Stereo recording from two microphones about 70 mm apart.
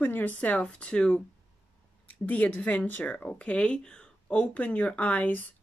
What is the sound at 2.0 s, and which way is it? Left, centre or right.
A woman's voice, left.